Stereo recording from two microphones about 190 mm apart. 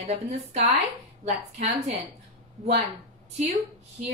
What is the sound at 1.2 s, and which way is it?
Speech, 35° right (ahead or behind).